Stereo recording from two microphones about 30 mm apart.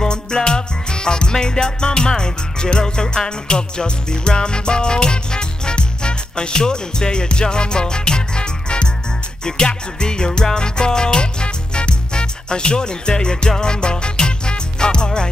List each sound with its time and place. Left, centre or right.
0.0 s music: left